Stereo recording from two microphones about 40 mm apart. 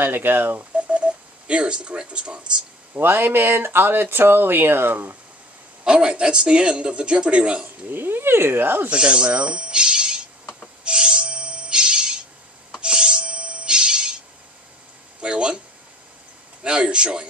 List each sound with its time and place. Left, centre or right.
0.0 s speech: right
0.7 s telephone dialing: right
2.9 s speech: right
5.9 s speech: centre
7.9 s speech: right
8.5 s speech: right
8.9 s speech: right
10.8 s music: right
15.1 s a sound: right
16.6 s speech: right